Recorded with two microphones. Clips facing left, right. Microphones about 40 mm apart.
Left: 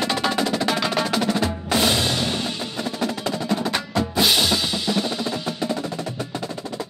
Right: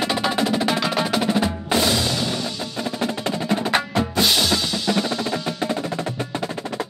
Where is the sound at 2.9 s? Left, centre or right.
Centre.